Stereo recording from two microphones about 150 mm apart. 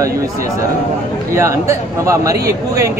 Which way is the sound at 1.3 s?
20° right (ahead or behind).